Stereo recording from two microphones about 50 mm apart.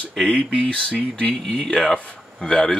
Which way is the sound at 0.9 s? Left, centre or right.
Left.